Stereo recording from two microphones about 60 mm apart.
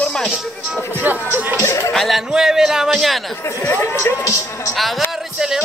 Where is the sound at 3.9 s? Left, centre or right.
Left.